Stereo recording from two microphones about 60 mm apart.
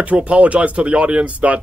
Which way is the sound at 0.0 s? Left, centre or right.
Right.